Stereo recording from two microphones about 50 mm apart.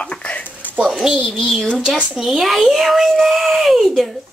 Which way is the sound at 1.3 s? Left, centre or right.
Centre.